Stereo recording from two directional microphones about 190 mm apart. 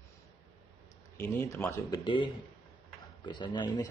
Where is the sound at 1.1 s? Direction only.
15° left (ahead or behind).